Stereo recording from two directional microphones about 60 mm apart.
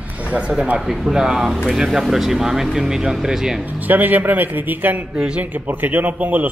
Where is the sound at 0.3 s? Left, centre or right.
Centre.